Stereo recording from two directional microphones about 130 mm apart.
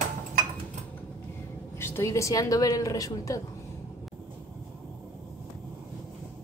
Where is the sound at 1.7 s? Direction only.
20° left (ahead or behind).